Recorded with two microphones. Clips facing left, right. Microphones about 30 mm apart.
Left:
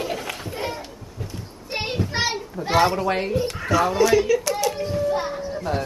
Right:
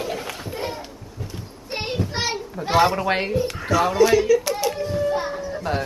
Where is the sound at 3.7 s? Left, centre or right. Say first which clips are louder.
Right 1 dB; centre.